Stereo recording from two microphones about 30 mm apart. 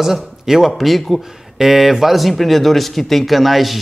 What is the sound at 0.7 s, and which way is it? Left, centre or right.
Speech, centre.